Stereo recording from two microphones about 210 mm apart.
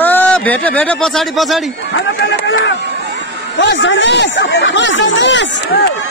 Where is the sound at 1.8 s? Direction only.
55° left (ahead or behind).